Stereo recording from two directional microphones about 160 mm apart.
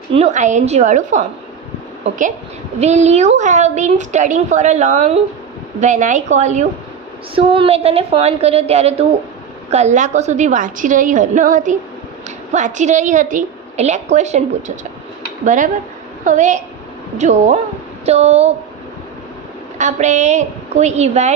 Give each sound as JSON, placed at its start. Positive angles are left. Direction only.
{"t": 0.1, "sound": "a woman's voice", "side_deg": -45}
{"t": 2.8, "sound": "a woman's voice", "side_deg": -45}
{"t": 7.3, "sound": "a woman's voice", "side_deg": -35}
{"t": 15.4, "sound": "a woman's voice", "side_deg": -50}
{"t": 19.8, "sound": "a woman's voice", "side_deg": -45}